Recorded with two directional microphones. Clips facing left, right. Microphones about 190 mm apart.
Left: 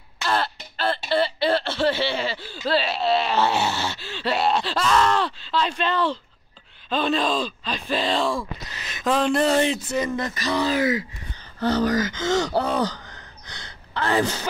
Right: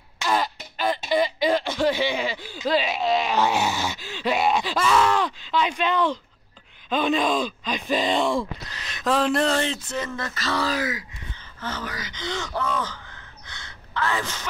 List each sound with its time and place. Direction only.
0.2 s speech: 10° right (ahead or behind)
8.6 s a sound: 5° left (ahead or behind)
9.5 s speech: 15° left (ahead or behind); by 14.5 s 35° left (ahead or behind)